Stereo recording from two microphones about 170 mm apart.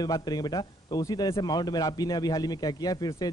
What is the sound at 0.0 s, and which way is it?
Speech, 25° left (ahead or behind).